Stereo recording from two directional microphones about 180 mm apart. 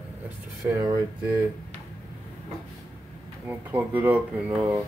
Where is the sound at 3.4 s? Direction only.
10° right (ahead or behind).